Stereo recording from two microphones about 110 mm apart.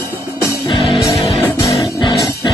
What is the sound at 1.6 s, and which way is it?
Music, 30° left (ahead or behind).